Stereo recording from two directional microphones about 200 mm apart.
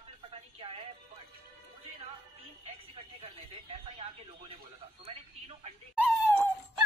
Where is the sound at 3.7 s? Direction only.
30° right (ahead or behind).